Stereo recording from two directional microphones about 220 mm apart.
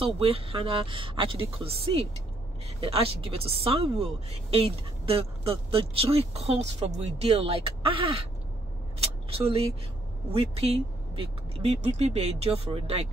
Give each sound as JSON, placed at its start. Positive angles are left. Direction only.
{"t": 0.0, "sound": "speech", "side_deg": -25}
{"t": 9.3, "sound": "speech", "side_deg": -25}